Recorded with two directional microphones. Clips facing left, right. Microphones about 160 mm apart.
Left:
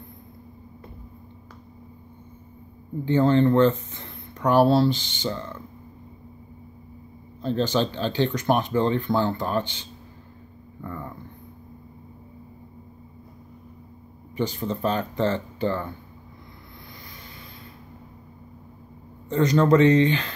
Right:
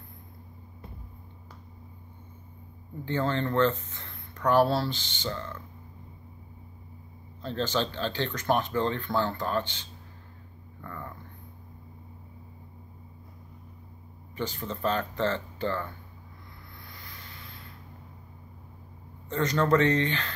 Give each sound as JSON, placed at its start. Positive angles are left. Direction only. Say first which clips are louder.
{"t": 3.1, "sound": "speech", "louder": "left 10 dB", "side_deg": 15}
{"t": 7.4, "sound": "speech", "louder": "left 6 dB", "side_deg": 15}
{"t": 10.8, "sound": "a sound", "louder": "left 6 dB", "side_deg": 15}
{"t": 14.3, "sound": "speech", "louder": "left 7 dB", "side_deg": 15}
{"t": 19.2, "sound": "speech", "louder": "left 7 dB", "side_deg": 15}